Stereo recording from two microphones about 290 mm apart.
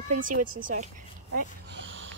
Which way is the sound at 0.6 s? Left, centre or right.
Right.